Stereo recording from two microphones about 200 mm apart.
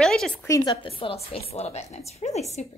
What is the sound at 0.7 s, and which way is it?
A woman's voice, 25° left (ahead or behind).